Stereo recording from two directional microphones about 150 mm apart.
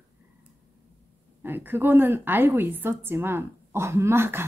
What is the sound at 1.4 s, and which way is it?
Speech, 15° right (ahead or behind).